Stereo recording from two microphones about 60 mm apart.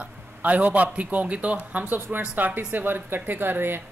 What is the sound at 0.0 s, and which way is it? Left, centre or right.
A man's voice, right.